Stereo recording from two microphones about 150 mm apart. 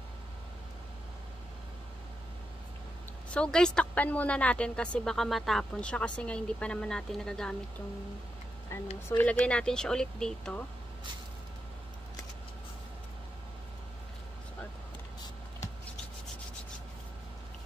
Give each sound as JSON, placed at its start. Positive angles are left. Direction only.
{"t": 3.3, "sound": "a woman's voice", "side_deg": 5}
{"t": 8.7, "sound": "a woman's voice", "side_deg": 20}